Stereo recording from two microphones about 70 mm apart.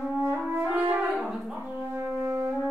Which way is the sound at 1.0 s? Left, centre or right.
Centre.